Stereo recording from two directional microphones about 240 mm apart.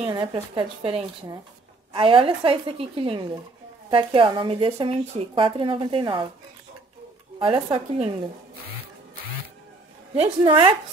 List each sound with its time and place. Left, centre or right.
0.0 s a woman's voice: centre
7.3 s a woman's voice: right
10.1 s a woman's voice: right